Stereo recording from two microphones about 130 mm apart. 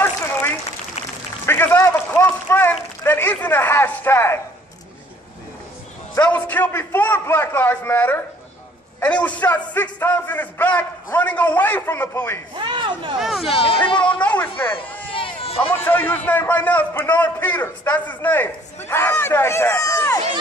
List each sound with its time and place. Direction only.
0.0 s a sound: 15° left (ahead or behind)
2.0 s run: 15° left (ahead or behind)
3.0 s speech: 15° left (ahead or behind)
6.2 s a man's voice: 10° left (ahead or behind)
12.5 s speech: 40° right (ahead or behind)
13.2 s speech: centre (ahead or behind)
13.8 s speech: 40° left (ahead or behind)
14.2 s a sound: 15° left (ahead or behind)
14.6 s a man's voice: 20° left (ahead or behind)
15.1 s a sound: 45° left (ahead or behind)
15.7 s a man's voice: 15° left (ahead or behind)